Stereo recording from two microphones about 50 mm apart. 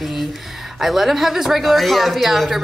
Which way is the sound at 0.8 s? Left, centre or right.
Centre.